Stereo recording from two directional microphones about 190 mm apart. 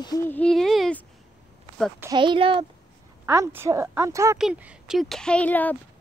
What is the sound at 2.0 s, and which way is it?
Speech, 20° right (ahead or behind).